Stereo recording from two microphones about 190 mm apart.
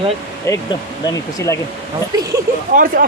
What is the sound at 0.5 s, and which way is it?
Speech, 15° left (ahead or behind).